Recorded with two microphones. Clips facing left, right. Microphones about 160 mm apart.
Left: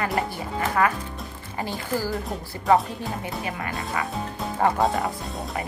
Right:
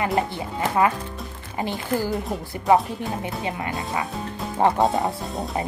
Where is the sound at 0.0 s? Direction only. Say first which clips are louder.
Right 3 dB; 20° right (ahead or behind).